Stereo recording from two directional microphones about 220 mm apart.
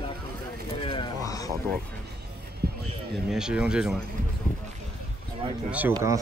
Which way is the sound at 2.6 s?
45° right (ahead or behind).